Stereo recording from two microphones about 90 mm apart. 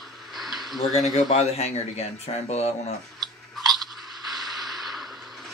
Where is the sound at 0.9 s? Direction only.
Centre (ahead or behind).